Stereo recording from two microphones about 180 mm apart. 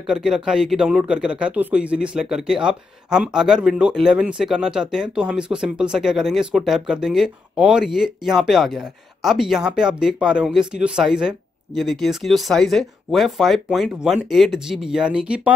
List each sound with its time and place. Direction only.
0.0 s speech: 5° right (ahead or behind)